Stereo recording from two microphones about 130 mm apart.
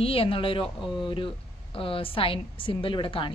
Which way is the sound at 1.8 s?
45° left (ahead or behind).